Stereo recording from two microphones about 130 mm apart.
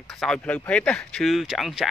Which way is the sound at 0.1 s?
5° left (ahead or behind).